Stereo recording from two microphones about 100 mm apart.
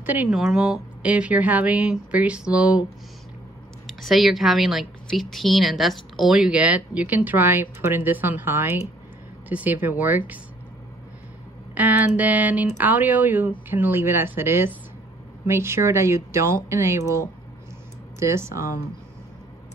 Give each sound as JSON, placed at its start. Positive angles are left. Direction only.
{"t": 0.0, "sound": "speech", "side_deg": -15}
{"t": 0.3, "sound": "speech", "side_deg": -5}
{"t": 4.0, "sound": "a woman's voice", "side_deg": 0}
{"t": 11.7, "sound": "speech", "side_deg": -15}
{"t": 18.2, "sound": "speech", "side_deg": -30}